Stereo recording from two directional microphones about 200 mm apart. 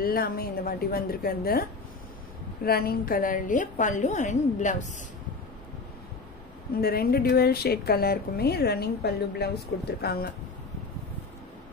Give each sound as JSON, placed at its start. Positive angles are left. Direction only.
{"t": 0.0, "sound": "a woman's voice", "side_deg": 45}
{"t": 6.8, "sound": "a woman's voice", "side_deg": 50}
{"t": 10.0, "sound": "a woman's voice", "side_deg": 50}